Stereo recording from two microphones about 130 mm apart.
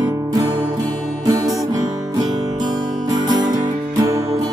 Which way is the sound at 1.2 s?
30° right (ahead or behind).